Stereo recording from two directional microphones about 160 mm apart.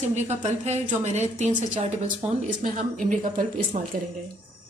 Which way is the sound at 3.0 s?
55° right (ahead or behind).